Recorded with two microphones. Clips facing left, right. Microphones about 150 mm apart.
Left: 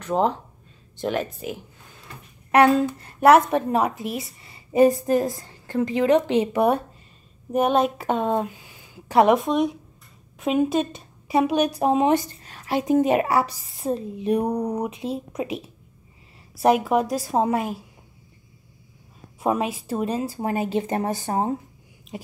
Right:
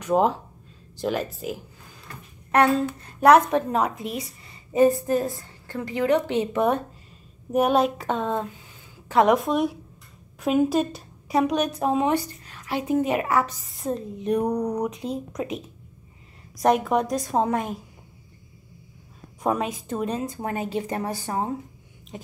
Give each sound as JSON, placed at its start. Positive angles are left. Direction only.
{"t": 0.0, "sound": "a woman's voice", "side_deg": -10}
{"t": 2.5, "sound": "a woman's voice", "side_deg": 10}
{"t": 4.7, "sound": "a woman's voice", "side_deg": 15}
{"t": 7.5, "sound": "a woman's voice", "side_deg": 0}
{"t": 8.6, "sound": "a sound", "side_deg": 10}
{"t": 10.4, "sound": "a woman's voice", "side_deg": 0}
{"t": 11.8, "sound": "speech", "side_deg": 20}
{"t": 12.4, "sound": "a sound", "side_deg": 40}
{"t": 13.0, "sound": "speech", "side_deg": 25}
{"t": 13.8, "sound": "a woman's voice", "side_deg": 10}
{"t": 16.6, "sound": "a woman's voice", "side_deg": 5}
{"t": 19.4, "sound": "a woman's voice", "side_deg": 5}
{"t": 22.1, "sound": "a sound", "side_deg": 10}